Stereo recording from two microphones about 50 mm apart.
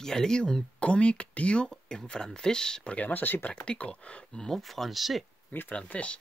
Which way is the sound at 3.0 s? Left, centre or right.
Left.